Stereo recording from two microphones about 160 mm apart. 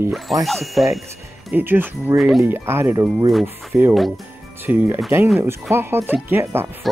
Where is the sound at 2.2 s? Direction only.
Centre (ahead or behind).